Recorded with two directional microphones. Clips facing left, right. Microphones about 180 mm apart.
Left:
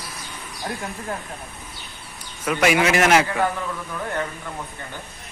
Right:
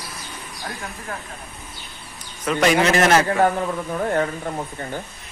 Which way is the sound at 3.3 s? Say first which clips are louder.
Right 5 dB; 40° right (ahead or behind).